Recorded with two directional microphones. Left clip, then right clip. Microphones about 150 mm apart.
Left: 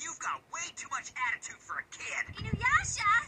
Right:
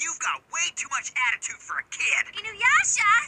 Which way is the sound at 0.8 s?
25° right (ahead or behind).